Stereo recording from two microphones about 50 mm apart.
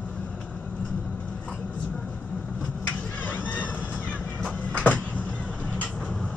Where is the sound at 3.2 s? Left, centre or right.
Left.